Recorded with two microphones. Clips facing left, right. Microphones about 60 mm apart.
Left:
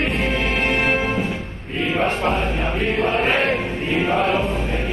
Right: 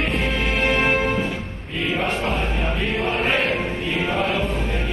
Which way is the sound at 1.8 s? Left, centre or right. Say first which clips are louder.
Left 3 dB; left.